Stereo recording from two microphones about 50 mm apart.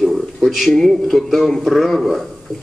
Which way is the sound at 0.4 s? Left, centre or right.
Centre.